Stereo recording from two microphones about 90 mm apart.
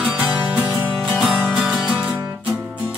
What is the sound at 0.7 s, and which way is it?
Music, 5° left (ahead or behind).